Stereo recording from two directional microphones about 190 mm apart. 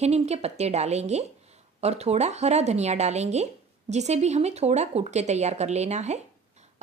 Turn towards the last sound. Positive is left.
turn(degrees=-35)  # may be behind; listen again after turning